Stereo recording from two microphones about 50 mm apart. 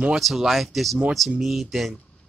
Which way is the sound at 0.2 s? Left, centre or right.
Centre.